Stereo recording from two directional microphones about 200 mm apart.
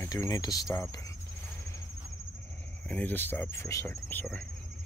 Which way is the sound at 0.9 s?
15° left (ahead or behind).